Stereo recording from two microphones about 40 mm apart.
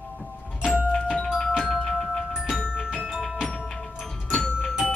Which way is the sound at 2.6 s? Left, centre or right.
Left.